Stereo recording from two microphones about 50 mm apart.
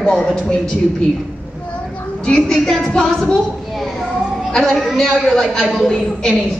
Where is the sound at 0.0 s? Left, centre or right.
Centre.